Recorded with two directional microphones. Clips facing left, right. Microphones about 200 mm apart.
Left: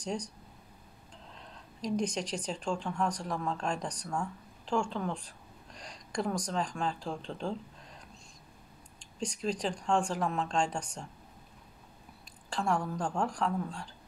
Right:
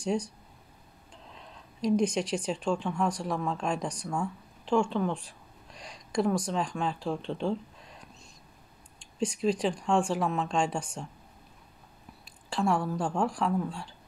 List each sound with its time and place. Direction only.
0.0 s speech: 10° right (ahead or behind)
2.0 s speech: 10° right (ahead or behind)
9.2 s speech: 5° right (ahead or behind)
12.4 s speech: 5° right (ahead or behind)